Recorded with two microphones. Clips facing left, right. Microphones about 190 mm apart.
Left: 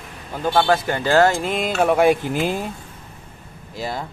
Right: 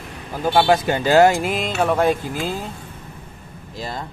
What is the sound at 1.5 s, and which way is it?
Speech, 5° right (ahead or behind).